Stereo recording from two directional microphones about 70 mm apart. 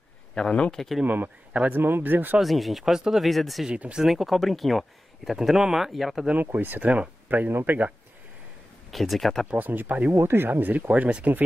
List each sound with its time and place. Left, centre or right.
0.3 s speech: centre
1.0 s speech: right
2.4 s speech: centre
3.6 s speech: centre
4.0 s speech: centre
6.3 s speech: right
8.9 s speech: centre
9.5 s speech: right
10.1 s speech: right